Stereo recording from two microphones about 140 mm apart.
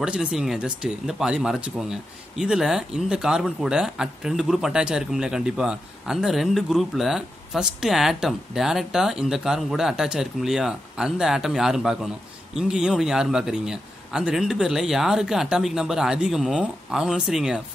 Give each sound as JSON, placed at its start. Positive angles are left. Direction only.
{"t": 0.0, "sound": "speech", "side_deg": -5}